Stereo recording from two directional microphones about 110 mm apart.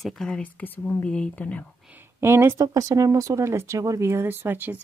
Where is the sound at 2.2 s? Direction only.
25° right (ahead or behind).